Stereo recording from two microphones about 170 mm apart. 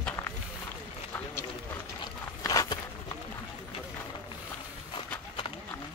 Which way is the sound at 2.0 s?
20° left (ahead or behind).